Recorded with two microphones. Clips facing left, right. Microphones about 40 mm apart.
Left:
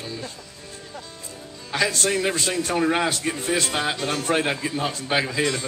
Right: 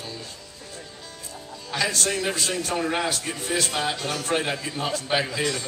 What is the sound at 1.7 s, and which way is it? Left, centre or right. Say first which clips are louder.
A man's voice: left 3 dB; left.